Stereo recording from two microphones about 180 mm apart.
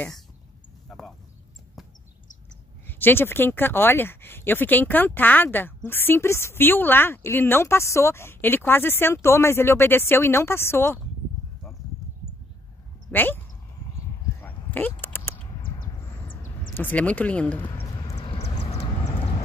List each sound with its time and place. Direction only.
0.8 s a sound: centre (ahead or behind)
2.9 s speech: 10° left (ahead or behind)
13.1 s speech: 10° left (ahead or behind)
14.4 s a sound: 10° left (ahead or behind)
16.7 s speech: 10° left (ahead or behind)
18.1 s vehicle: 35° left (ahead or behind)